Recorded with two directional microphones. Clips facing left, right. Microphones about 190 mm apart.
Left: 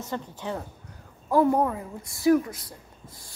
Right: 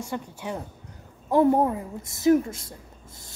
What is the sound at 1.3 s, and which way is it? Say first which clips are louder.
A woman's voice: right 2 dB; 25° right (ahead or behind).